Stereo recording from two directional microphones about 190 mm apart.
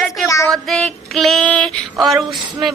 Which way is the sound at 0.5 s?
Centre (ahead or behind).